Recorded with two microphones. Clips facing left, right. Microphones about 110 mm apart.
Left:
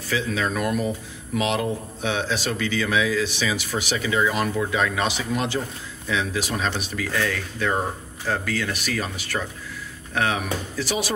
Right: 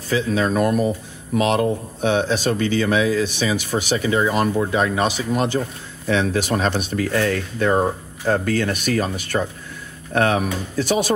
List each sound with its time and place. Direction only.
0.1 s speech: 35° right (ahead or behind)
6.0 s speech: 55° right (ahead or behind)
6.5 s speech: 45° right (ahead or behind)